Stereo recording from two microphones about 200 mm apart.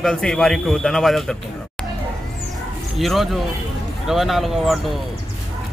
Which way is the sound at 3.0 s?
Centre (ahead or behind).